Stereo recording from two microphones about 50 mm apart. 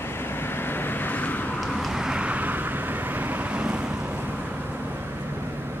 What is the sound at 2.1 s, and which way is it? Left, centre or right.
Vehicle, right.